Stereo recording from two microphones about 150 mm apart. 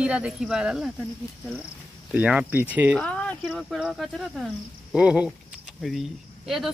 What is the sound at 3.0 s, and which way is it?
Speech, 5° left (ahead or behind).